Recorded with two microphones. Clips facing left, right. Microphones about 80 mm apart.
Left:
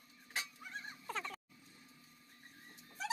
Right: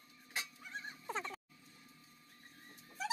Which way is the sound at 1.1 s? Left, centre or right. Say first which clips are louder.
Right 1 dB; right.